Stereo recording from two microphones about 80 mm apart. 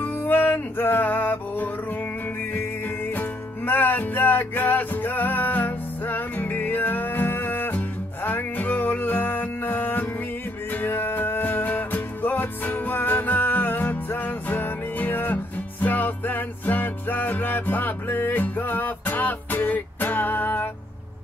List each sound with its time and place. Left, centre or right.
0.0 s music: left
3.1 s music: left